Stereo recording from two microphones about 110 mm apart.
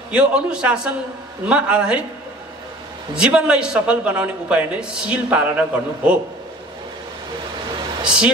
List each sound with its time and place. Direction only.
0.1 s a man's voice: 10° right (ahead or behind)
3.2 s a man's voice: 10° right (ahead or behind)
8.0 s speech: 5° right (ahead or behind)